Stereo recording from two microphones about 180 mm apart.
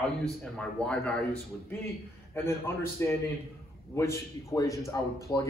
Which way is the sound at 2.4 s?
15° left (ahead or behind).